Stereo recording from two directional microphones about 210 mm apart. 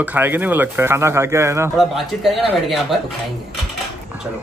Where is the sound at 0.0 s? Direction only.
10° right (ahead or behind).